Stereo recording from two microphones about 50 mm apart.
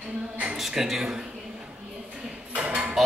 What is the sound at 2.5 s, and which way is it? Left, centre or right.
Cutlery, right.